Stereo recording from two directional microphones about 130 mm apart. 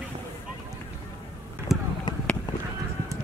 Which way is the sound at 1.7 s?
Centre (ahead or behind).